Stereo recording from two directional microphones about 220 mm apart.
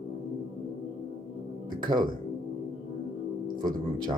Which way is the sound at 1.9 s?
20° right (ahead or behind).